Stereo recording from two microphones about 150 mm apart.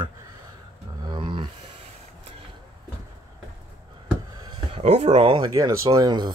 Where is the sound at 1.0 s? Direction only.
30° right (ahead or behind).